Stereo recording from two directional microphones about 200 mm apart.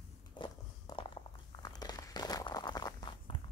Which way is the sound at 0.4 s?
25° left (ahead or behind).